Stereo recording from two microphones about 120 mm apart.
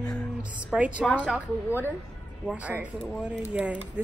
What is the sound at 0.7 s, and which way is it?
Speech, 10° right (ahead or behind).